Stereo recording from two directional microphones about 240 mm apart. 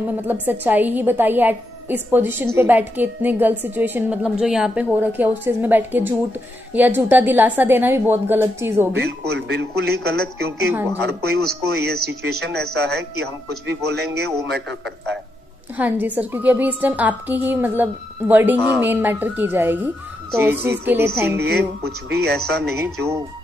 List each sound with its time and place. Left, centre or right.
0.3 s a woman's voice: centre
8.9 s a man's voice: right
10.7 s a woman's voice: centre
11.2 s a man's voice: right
15.8 s a woman's voice: centre
21.4 s speech: right